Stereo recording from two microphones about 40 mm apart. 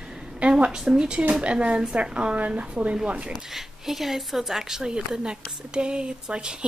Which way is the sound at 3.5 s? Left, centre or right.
Centre.